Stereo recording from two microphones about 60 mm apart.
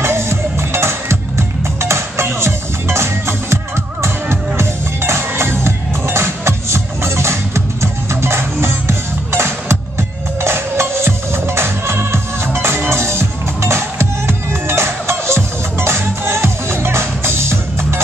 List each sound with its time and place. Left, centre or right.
0.0 s music: right